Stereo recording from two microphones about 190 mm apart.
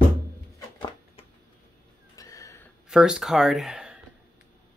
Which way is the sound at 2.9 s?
5° right (ahead or behind).